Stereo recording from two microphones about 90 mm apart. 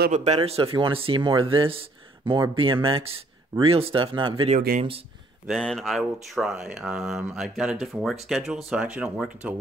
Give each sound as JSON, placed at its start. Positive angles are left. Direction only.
{"t": 0.4, "sound": "speech", "side_deg": -90}
{"t": 5.5, "sound": "speech", "side_deg": 5}